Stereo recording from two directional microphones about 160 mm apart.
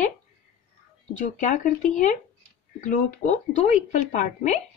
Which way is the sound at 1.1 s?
50° left (ahead or behind).